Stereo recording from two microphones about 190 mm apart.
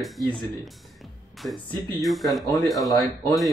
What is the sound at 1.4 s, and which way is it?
Speech, centre (ahead or behind).